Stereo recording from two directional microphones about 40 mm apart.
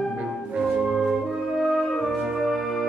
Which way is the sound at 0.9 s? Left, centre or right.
Centre.